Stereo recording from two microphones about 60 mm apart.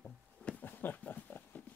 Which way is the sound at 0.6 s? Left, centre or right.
Left.